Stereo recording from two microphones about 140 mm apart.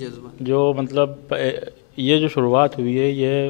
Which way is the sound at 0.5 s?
15° left (ahead or behind).